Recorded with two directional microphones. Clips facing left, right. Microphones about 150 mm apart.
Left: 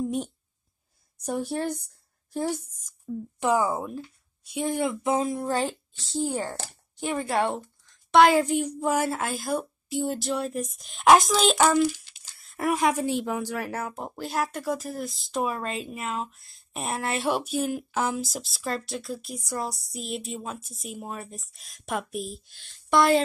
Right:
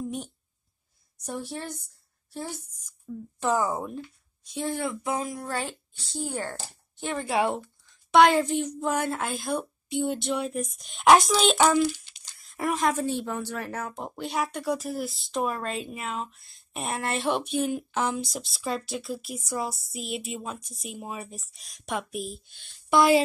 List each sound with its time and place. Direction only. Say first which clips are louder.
1.1 s speech: left 6 dB; 60° left (ahead or behind)
3.3 s a woman's voice: left 2 dB; 10° left (ahead or behind)
6.1 s a woman's voice: left 4 dB; 15° left (ahead or behind)
7.2 s a woman's voice: right 2 dB; centre (ahead or behind)
12.7 s speech: left 2 dB; 10° left (ahead or behind)